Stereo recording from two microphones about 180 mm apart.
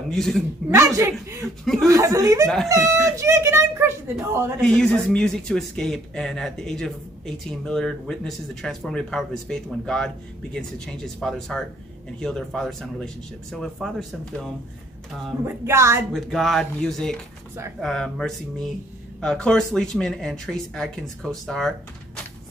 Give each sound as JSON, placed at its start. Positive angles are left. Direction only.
{"t": 0.1, "sound": "speech", "side_deg": 0}
{"t": 0.7, "sound": "speech", "side_deg": -15}
{"t": 1.6, "sound": "speech", "side_deg": 0}
{"t": 1.9, "sound": "speech", "side_deg": -15}
{"t": 2.4, "sound": "speech", "side_deg": 0}
{"t": 2.7, "sound": "speech", "side_deg": -15}
{"t": 4.6, "sound": "speech", "side_deg": 5}
{"t": 15.4, "sound": "speech", "side_deg": -15}
{"t": 16.1, "sound": "speech", "side_deg": 0}